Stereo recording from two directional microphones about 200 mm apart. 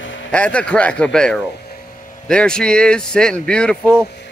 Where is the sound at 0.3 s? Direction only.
5° left (ahead or behind).